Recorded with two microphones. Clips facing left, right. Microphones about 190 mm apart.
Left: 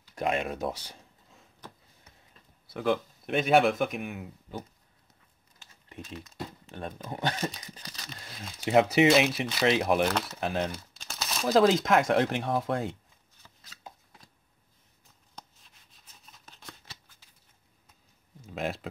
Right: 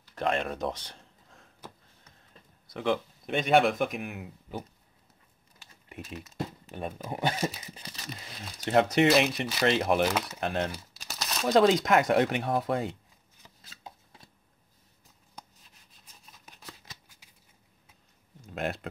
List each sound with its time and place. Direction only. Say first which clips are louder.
0.0 s a sound: even; 10° left (ahead or behind)
2.7 s speech: left 1 dB; centre (ahead or behind)
5.9 s crumpling: right 1 dB; 5° right (ahead or behind)
6.7 s speech: right 2 dB; 10° right (ahead or behind)
13.4 s chopping: right 2 dB; 15° right (ahead or behind)
15.3 s shuffling cards: even; 5° right (ahead or behind)
18.4 s a sound: even; centre (ahead or behind)